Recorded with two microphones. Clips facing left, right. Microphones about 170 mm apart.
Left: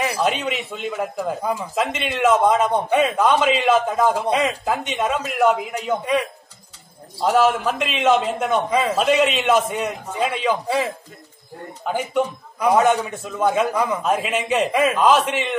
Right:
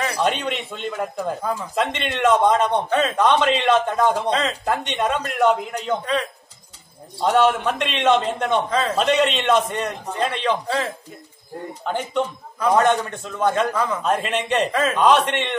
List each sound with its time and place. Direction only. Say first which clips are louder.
0.2 s a man's voice: even; 5° left (ahead or behind)
4.3 s a man's voice: left 2 dB; 15° left (ahead or behind)
4.6 s a man's voice: even; 5° left (ahead or behind)